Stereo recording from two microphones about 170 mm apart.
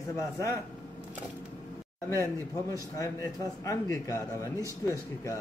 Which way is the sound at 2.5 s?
20° left (ahead or behind).